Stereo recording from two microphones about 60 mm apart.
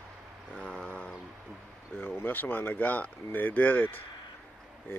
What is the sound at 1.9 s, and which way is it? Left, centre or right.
Speech, left.